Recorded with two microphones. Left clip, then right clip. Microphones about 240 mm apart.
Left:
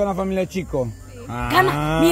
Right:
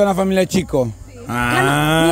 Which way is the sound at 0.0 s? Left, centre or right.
Right.